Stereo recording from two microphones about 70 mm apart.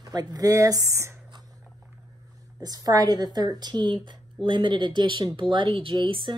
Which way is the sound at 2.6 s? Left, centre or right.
Right.